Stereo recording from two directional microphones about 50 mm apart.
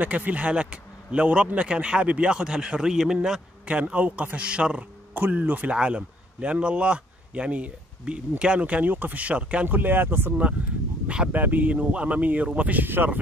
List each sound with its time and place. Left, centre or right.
0.0 s a man's voice: right; by 3.4 s centre
3.6 s a man's voice: right
9.7 s speech: right
11.3 s speech: right
11.9 s a man's voice: right
12.8 s speech: right